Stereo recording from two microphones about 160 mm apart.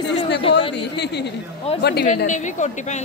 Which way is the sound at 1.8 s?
90° left.